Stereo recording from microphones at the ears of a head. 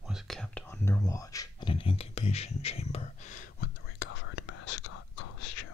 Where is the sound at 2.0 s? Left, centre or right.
Left.